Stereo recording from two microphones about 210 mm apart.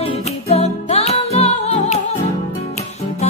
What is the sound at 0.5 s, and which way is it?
Music, 30° left (ahead or behind).